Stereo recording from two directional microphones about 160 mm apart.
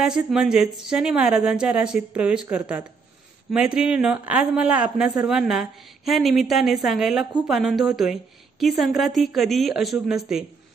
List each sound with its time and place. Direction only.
0.0 s a woman's voice: 5° right (ahead or behind)